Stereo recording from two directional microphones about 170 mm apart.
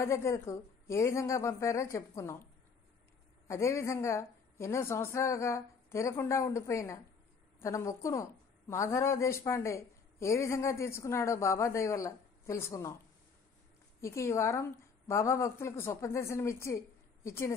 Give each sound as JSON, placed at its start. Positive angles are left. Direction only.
{"t": 0.0, "sound": "speech", "side_deg": 15}
{"t": 3.4, "sound": "speech", "side_deg": 15}
{"t": 14.0, "sound": "speech", "side_deg": 15}